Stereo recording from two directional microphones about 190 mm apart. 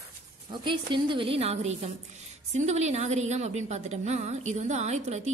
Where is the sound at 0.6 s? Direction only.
25° right (ahead or behind).